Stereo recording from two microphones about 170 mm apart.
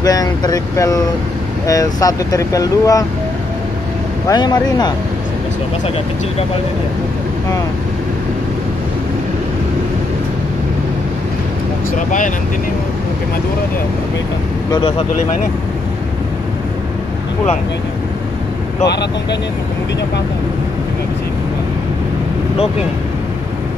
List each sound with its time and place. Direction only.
0.0 s speech: 20° left (ahead or behind)
4.3 s speech: 25° left (ahead or behind)
14.7 s speech: 30° left (ahead or behind)